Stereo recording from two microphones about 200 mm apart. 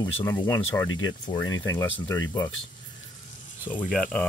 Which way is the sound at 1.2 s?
20° left (ahead or behind).